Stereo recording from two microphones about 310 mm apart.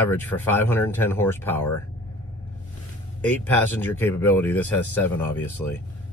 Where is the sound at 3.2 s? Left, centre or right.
Centre.